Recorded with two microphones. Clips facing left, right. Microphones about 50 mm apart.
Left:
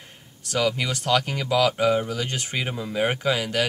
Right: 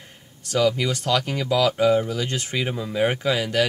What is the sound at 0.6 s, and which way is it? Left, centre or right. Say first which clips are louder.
Speech: right 3 dB; centre.